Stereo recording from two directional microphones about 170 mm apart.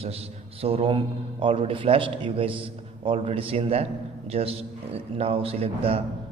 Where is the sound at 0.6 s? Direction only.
35° right (ahead or behind).